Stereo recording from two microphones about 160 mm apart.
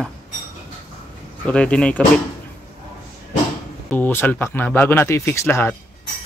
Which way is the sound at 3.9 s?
10° left (ahead or behind).